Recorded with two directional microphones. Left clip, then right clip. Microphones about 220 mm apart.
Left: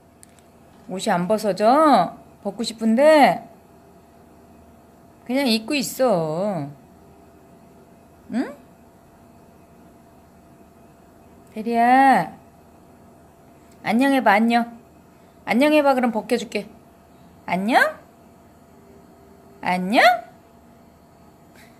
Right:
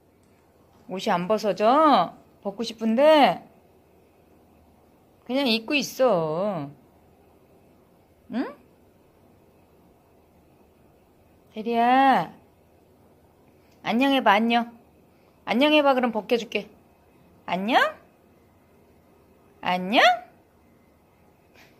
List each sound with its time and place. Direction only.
0.8 s speech: 5° right (ahead or behind)
5.2 s speech: 5° right (ahead or behind)
8.3 s speech: 5° right (ahead or behind)
11.5 s speech: 5° right (ahead or behind)
13.8 s speech: 5° right (ahead or behind)
19.6 s speech: 10° right (ahead or behind)